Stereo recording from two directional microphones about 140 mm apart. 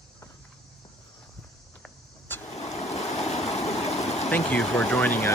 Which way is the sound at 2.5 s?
50° left (ahead or behind).